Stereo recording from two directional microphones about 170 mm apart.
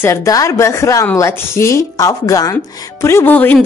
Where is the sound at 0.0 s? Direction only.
15° left (ahead or behind).